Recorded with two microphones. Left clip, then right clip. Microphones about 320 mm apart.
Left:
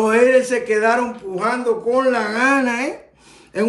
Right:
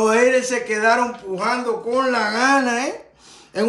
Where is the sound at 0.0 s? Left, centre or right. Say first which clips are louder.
Left 2 dB; centre.